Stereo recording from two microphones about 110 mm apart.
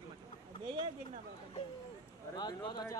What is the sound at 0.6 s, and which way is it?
Speech, 50° right (ahead or behind).